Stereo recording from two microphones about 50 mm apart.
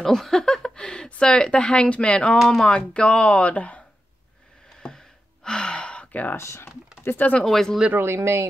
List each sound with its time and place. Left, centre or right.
0.0 s speech: centre
2.3 s speech: centre
2.6 s speech: left
4.8 s gasp: centre
6.3 s speech: left
7.1 s speech: left
7.4 s speech: centre
7.9 s speech: right